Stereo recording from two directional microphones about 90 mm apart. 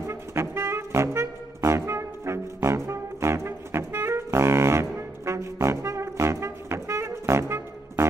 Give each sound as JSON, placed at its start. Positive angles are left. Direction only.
{"t": 0.0, "sound": "music", "side_deg": -30}